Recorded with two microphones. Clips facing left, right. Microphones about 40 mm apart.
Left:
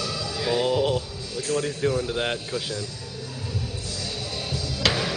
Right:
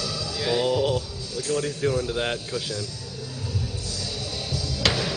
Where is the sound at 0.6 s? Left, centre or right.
Centre.